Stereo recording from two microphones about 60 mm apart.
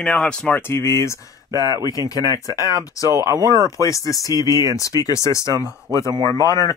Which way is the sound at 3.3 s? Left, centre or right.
Right.